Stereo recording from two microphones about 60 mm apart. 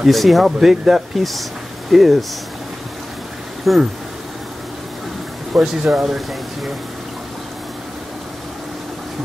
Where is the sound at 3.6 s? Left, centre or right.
Centre.